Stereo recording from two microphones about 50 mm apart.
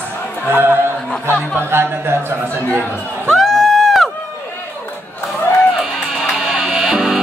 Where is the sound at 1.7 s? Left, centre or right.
Right.